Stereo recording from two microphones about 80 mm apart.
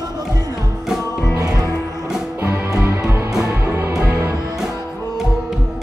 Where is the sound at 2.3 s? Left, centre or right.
Right.